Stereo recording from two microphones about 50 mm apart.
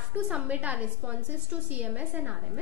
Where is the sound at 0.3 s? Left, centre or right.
Right.